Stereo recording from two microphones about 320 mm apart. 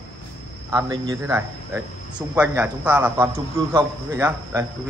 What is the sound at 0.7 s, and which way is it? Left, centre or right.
A man's voice, centre.